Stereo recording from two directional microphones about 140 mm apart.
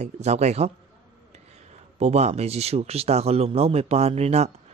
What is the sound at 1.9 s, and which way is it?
Speech, 50° right (ahead or behind).